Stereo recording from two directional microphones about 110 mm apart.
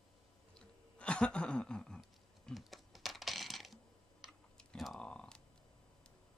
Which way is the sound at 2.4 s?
Centre (ahead or behind).